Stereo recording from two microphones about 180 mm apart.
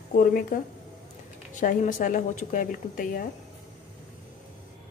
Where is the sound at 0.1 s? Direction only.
55° left (ahead or behind).